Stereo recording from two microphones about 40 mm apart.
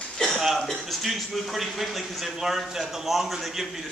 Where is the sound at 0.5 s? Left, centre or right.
Centre.